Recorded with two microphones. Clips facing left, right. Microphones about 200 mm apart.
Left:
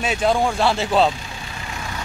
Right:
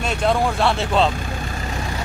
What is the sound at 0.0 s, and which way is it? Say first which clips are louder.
Speech: left 1 dB; 5° left (ahead or behind).